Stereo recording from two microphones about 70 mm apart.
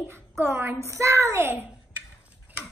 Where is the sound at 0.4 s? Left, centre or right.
Right.